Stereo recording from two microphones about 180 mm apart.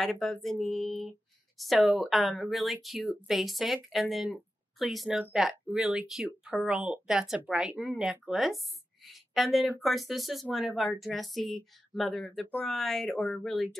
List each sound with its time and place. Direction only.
0.0 s speech: 5° left (ahead or behind)